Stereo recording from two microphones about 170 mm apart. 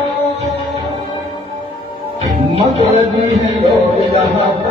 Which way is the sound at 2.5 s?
40° right (ahead or behind).